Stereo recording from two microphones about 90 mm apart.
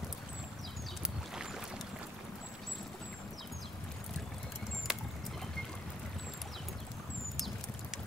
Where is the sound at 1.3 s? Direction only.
5° right (ahead or behind).